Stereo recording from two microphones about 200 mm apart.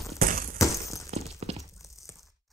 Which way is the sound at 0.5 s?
15° left (ahead or behind).